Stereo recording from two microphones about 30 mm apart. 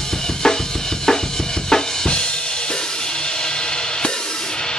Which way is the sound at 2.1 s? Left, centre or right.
Left.